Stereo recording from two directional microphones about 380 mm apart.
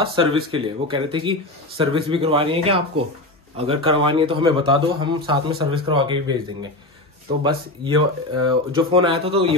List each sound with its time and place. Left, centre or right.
0.0 s speech: centre
5.5 s speech: right
5.9 s speech: centre